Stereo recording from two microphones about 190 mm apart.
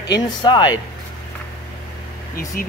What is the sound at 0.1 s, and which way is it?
Speech, 25° left (ahead or behind).